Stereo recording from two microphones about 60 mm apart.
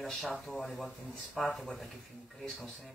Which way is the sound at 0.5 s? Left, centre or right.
Centre.